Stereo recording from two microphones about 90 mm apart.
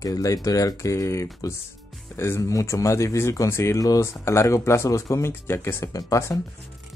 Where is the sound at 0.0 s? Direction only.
40° left (ahead or behind).